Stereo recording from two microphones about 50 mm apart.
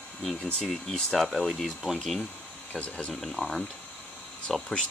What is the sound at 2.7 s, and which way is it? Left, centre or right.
Speech, left.